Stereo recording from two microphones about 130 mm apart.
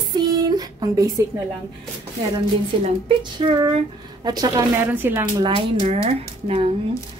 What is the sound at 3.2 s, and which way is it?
A woman's voice, 35° right (ahead or behind).